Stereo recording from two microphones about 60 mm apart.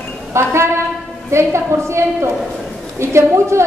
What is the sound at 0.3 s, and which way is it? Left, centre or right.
A woman's voice, right.